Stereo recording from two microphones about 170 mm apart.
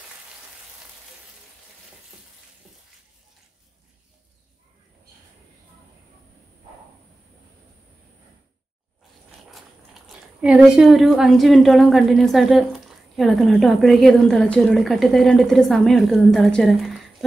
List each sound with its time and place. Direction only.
9.5 s speech: centre (ahead or behind)